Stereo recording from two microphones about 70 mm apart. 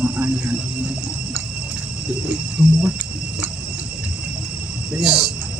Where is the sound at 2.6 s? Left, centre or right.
Centre.